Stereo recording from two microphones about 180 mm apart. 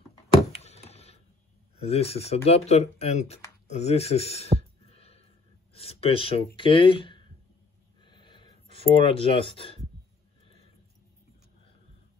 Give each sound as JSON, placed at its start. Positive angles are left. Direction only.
{"t": 0.6, "sound": "a sound", "side_deg": 35}
{"t": 1.8, "sound": "speech", "side_deg": 35}
{"t": 4.6, "sound": "music", "side_deg": 35}
{"t": 5.7, "sound": "speech", "side_deg": 35}
{"t": 8.0, "sound": "a sound", "side_deg": 25}
{"t": 8.6, "sound": "speech", "side_deg": 30}